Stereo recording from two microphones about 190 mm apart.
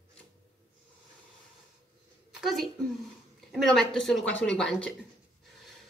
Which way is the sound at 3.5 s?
Centre (ahead or behind).